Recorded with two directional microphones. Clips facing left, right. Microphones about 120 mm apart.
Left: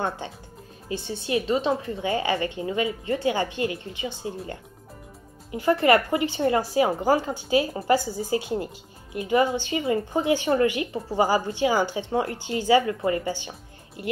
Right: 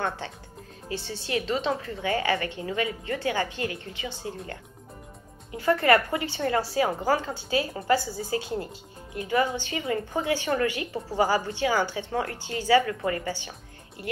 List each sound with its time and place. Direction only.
0.8 s a woman's voice: 15° left (ahead or behind)
5.6 s a woman's voice: 20° left (ahead or behind)